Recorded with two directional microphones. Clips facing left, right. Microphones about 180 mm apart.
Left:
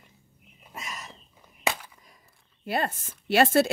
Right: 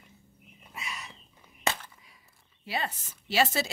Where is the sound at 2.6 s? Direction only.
50° left (ahead or behind).